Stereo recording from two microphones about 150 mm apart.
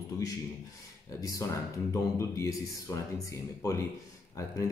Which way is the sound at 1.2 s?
20° left (ahead or behind).